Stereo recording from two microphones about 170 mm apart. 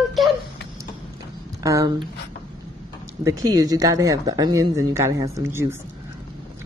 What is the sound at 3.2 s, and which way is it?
Speech, 20° right (ahead or behind).